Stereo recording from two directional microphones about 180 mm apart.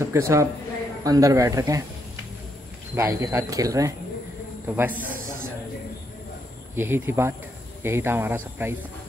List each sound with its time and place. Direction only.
0.0 s speech: 15° right (ahead or behind)
3.0 s speech: 20° right (ahead or behind)
6.7 s speech: 10° right (ahead or behind)